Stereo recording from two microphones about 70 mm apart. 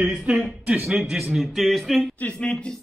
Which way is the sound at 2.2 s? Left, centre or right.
Centre.